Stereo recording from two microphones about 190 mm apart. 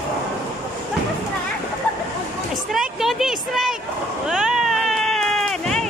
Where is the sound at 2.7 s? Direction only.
Centre (ahead or behind).